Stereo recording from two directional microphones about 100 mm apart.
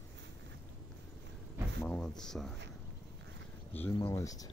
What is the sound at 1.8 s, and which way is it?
Speech, 10° left (ahead or behind).